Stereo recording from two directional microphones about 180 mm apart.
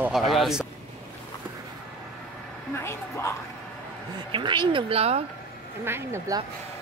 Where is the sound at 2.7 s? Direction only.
15° left (ahead or behind).